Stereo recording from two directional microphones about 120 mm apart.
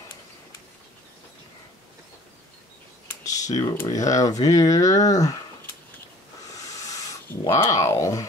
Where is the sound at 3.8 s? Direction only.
30° left (ahead or behind).